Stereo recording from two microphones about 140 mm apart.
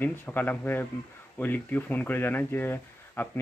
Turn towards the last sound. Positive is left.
turn(degrees=15)  # may be behind; listen again after turning